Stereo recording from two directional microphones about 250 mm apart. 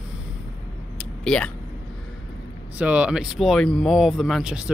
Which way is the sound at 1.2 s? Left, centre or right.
Centre.